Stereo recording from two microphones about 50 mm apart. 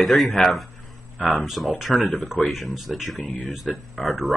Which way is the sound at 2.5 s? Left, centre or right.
Centre.